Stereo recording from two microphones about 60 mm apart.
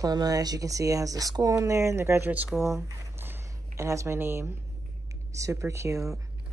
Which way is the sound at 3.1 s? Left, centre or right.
Right.